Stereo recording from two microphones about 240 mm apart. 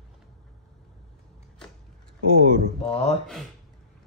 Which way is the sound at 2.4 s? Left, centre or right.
Right.